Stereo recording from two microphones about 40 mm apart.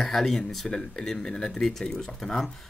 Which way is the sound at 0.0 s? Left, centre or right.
Centre.